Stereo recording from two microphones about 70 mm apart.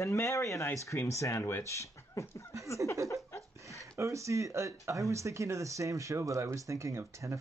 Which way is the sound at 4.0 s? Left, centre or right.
Right.